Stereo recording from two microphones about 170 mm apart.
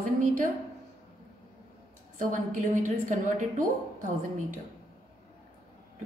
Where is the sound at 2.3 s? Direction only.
50° right (ahead or behind).